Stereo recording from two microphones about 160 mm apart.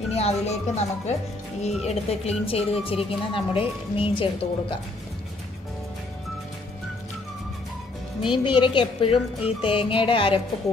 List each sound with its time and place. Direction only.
0.1 s a woman's voice: 40° left (ahead or behind)
8.3 s a woman's voice: 30° left (ahead or behind)